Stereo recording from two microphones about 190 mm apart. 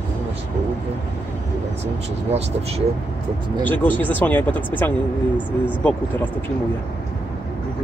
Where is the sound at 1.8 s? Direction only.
35° right (ahead or behind).